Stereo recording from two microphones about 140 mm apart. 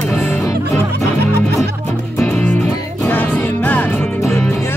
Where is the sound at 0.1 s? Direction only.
10° left (ahead or behind).